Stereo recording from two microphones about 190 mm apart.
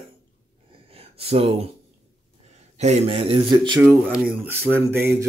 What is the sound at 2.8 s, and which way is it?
Speech, 35° right (ahead or behind).